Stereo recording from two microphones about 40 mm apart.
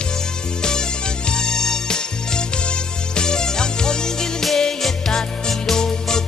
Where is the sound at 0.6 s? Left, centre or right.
Centre.